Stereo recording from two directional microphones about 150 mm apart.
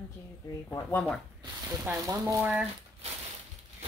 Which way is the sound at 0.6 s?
15° left (ahead or behind).